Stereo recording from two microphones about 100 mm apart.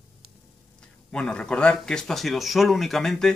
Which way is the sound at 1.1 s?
10° left (ahead or behind).